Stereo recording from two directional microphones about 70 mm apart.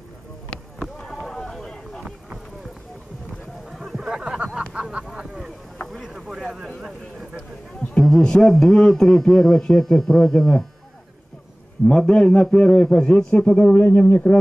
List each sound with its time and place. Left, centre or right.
0.9 s run: centre
3.7 s a sound: centre
7.9 s speech: centre
11.9 s speech: centre